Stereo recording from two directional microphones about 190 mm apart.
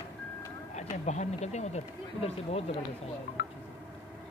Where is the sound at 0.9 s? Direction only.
40° left (ahead or behind).